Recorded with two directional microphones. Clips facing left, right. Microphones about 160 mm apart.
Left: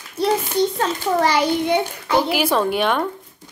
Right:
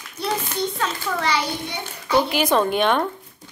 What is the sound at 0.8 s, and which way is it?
Speech, 40° left (ahead or behind).